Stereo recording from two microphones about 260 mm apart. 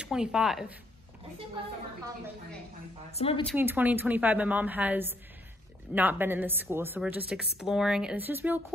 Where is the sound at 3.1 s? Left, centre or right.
Left.